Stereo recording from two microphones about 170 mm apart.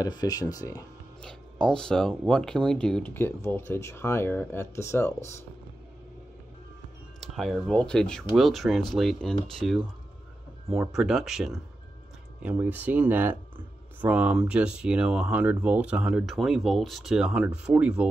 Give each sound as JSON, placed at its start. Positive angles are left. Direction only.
{"t": 0.0, "sound": "speech", "side_deg": 20}
{"t": 1.2, "sound": "speech", "side_deg": 5}
{"t": 7.2, "sound": "speech", "side_deg": 0}